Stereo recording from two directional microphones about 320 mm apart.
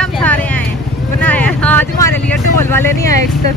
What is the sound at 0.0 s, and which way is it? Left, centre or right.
Vehicle, centre.